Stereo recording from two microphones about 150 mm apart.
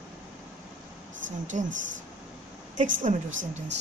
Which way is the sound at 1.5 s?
55° right (ahead or behind).